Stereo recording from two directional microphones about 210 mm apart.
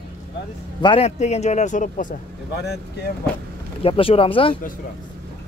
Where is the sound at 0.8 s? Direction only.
30° left (ahead or behind).